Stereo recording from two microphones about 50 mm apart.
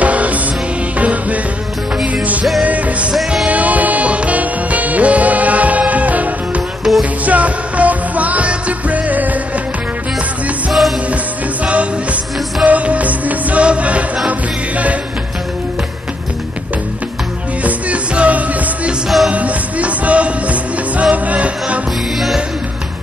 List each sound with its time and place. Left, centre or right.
0.0 s music: right
2.6 s music: right
6.8 s music: centre
7.2 s music: right
11.6 s music: right
17.6 s music: right
19.0 s music: centre
19.3 s music: right